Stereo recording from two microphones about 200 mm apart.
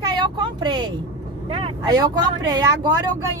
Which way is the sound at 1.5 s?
25° right (ahead or behind).